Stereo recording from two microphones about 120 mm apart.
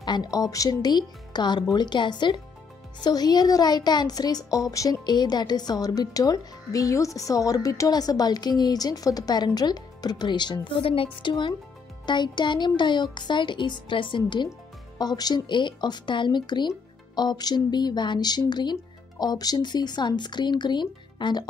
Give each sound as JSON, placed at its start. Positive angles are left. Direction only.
{"t": 0.0, "sound": "speech", "side_deg": 35}